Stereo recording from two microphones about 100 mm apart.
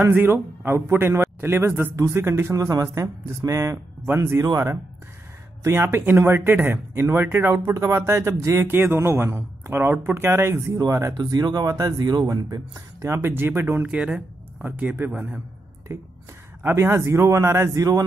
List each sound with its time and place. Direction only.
0.0 s speech: 25° right (ahead or behind)
2.5 s speech: 35° right (ahead or behind)
11.1 s speech: 40° right (ahead or behind); by 13.9 s 20° right (ahead or behind)
13.9 s a man's voice: 10° right (ahead or behind)
15.9 s speech: 30° right (ahead or behind)